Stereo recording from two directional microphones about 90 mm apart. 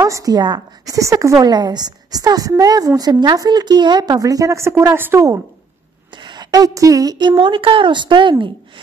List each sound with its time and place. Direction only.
0.0 s a woman's voice: 40° right (ahead or behind)
3.0 s a woman's voice: 50° right (ahead or behind); by 5.2 s 25° right (ahead or behind)
6.2 s a woman's voice: 50° right (ahead or behind)